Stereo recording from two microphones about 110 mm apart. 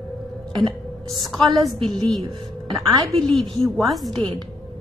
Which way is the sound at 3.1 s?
5° left (ahead or behind).